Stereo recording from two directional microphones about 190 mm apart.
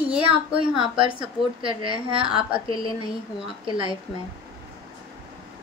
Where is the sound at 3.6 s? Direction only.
25° right (ahead or behind).